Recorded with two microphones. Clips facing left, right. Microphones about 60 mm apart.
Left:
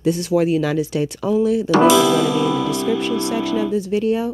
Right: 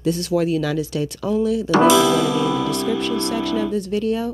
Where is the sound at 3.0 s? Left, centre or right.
Centre.